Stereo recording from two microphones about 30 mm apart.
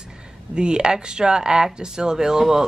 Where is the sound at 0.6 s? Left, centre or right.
Right.